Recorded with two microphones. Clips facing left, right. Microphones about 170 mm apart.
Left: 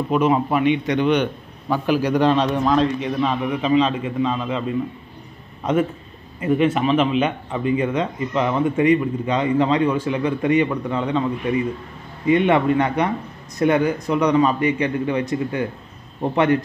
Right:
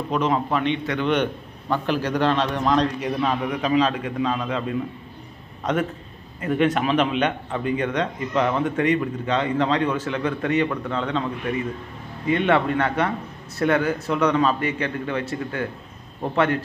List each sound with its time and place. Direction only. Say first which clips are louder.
0.1 s speech: left 4 dB; 10° left (ahead or behind)
1.0 s speech: left 3 dB; centre (ahead or behind)
2.6 s a man's voice: left 2 dB; centre (ahead or behind)
6.4 s speech: left 3 dB; 5° left (ahead or behind)
12.3 s speech: left 4 dB; 10° left (ahead or behind)